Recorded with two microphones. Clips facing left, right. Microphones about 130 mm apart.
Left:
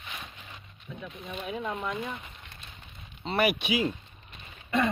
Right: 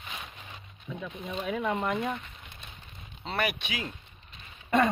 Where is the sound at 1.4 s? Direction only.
85° right.